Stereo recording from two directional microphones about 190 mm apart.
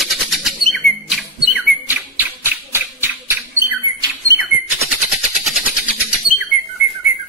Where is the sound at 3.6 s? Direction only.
15° right (ahead or behind).